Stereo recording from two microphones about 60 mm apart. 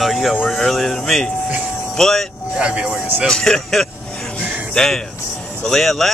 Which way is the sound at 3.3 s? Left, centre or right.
Centre.